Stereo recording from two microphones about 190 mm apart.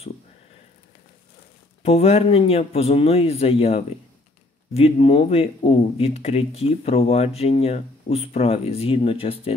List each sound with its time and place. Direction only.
1.8 s speech: 30° left (ahead or behind)